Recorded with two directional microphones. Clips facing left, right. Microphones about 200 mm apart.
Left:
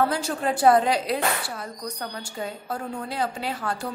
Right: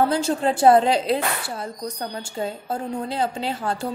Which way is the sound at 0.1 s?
25° right (ahead or behind).